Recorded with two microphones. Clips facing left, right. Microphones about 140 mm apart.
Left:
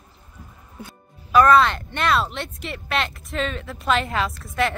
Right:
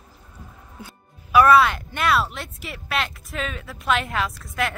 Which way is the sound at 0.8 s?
10° right (ahead or behind).